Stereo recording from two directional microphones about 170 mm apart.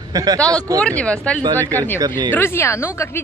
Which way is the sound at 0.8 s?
5° left (ahead or behind).